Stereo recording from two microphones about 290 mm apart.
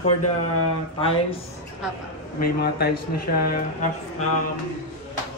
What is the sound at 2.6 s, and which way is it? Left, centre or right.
Speech, left.